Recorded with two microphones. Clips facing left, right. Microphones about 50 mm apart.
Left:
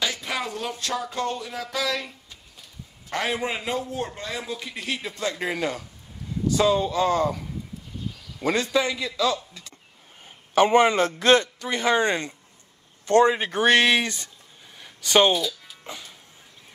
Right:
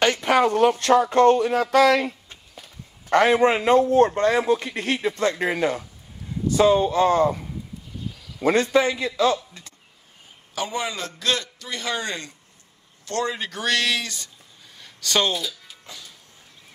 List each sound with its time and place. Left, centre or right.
0.0 s speech: right
5.4 s a man's voice: right
8.5 s a man's voice: right
10.5 s a man's voice: left
14.8 s a sound: centre
15.8 s music: left